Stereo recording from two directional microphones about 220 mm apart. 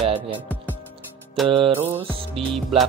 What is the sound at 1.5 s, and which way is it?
Speech, 25° right (ahead or behind).